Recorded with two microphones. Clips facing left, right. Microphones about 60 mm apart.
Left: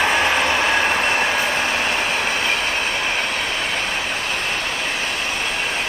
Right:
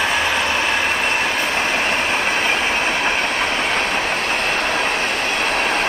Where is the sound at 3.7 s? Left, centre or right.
Right.